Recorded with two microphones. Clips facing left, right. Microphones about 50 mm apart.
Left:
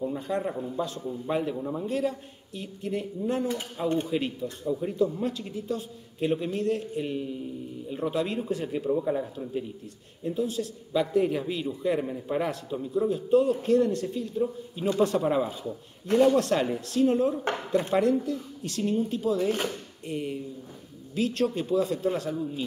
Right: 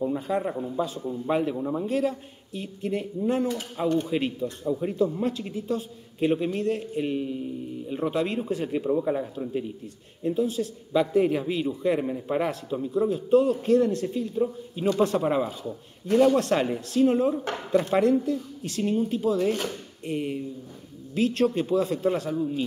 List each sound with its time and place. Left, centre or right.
0.0 s a man's voice: centre